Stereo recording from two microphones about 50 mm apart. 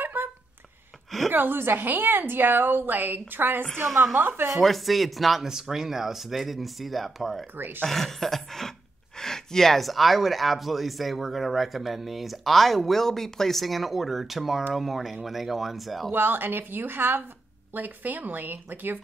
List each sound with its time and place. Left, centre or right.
0.0 s a sound: right
1.3 s a woman's voice: right
3.8 s a woman's voice: right
4.2 s speech: right
4.5 s speech: centre
7.5 s a woman's voice: right
7.8 s speech: centre
16.1 s a woman's voice: right